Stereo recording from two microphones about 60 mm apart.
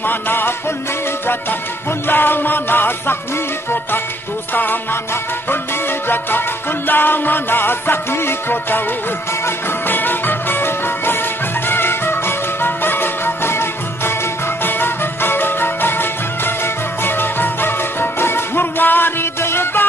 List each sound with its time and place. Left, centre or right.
0.0 s music: left
2.0 s music: left
6.9 s music: left
9.8 s music: left